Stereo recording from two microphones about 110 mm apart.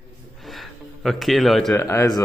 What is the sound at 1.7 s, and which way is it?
Speech, 25° left (ahead or behind).